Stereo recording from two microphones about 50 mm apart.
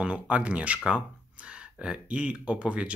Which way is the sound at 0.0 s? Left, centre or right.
Right.